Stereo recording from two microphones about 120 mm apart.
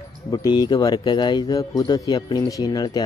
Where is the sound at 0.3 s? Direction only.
35° left (ahead or behind).